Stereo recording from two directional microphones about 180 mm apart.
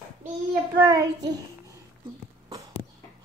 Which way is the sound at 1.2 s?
20° right (ahead or behind).